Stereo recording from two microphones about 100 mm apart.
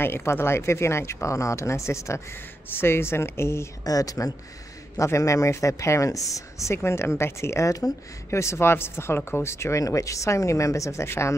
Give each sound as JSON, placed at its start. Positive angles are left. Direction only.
{"t": 0.0, "sound": "speech", "side_deg": 25}
{"t": 3.8, "sound": "speech", "side_deg": 35}